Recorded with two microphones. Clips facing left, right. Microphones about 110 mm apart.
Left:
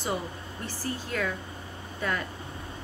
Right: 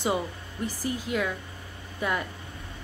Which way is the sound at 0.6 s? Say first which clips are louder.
Right 4 dB; 15° right (ahead or behind).